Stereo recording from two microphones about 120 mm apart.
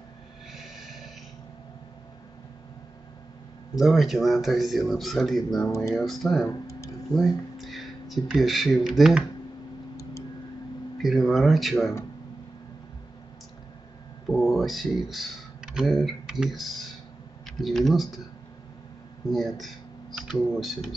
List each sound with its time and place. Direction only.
0.5 s snort: centre (ahead or behind)
3.7 s speech: centre (ahead or behind)
6.7 s tick-tock: 25° left (ahead or behind)
7.2 s speech: centre (ahead or behind)
11.0 s speech: centre (ahead or behind)
14.3 s speech: centre (ahead or behind)
19.3 s speech: centre (ahead or behind)